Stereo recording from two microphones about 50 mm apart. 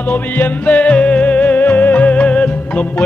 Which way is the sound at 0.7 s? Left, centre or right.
Left.